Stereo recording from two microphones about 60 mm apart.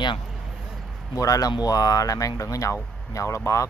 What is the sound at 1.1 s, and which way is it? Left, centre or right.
Speech, left.